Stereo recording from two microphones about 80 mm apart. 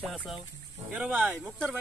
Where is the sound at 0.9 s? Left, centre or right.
Centre.